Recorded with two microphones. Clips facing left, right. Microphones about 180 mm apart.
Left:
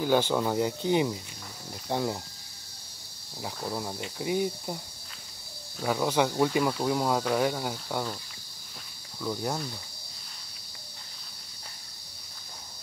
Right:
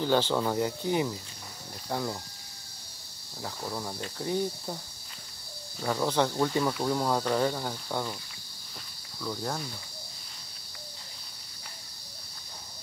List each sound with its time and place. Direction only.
0.0 s speech: 10° left (ahead or behind)
3.4 s speech: 15° left (ahead or behind)
5.8 s speech: 5° left (ahead or behind)
9.2 s speech: 10° left (ahead or behind)